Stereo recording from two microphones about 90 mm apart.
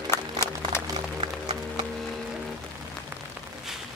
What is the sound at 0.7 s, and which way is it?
Music, 30° left (ahead or behind).